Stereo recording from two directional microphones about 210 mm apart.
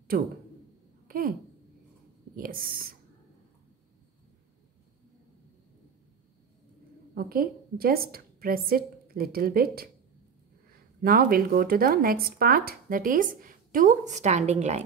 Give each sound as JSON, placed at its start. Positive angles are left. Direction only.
{"t": 0.1, "sound": "speech", "side_deg": -40}
{"t": 1.0, "sound": "a sound", "side_deg": -45}
{"t": 2.3, "sound": "a woman's voice", "side_deg": -45}
{"t": 7.2, "sound": "a woman's voice", "side_deg": -45}
{"t": 11.0, "sound": "speech", "side_deg": -45}